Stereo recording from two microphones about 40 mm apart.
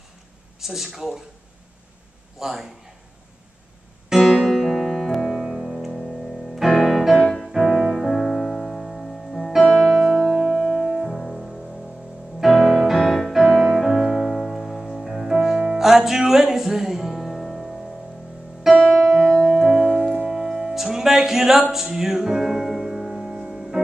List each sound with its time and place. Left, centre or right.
0.6 s speech: centre
2.4 s speech: centre
4.1 s piano: centre
6.8 s music: centre
9.8 s music: centre
12.4 s music: centre
13.0 s music: centre
18.7 s music: centre
19.4 s piano: centre
19.8 s music: centre